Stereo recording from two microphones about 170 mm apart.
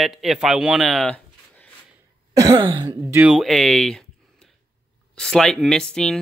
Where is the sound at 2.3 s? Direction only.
25° right (ahead or behind).